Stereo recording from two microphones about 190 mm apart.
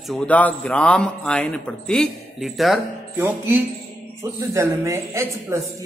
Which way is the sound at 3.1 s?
10° right (ahead or behind).